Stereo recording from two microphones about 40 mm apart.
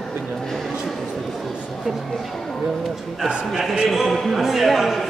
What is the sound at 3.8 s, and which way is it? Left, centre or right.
Speech, centre.